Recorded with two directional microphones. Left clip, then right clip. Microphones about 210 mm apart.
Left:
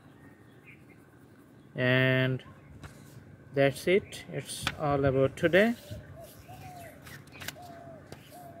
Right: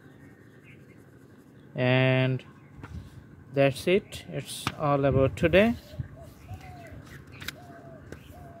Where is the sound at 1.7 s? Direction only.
15° right (ahead or behind).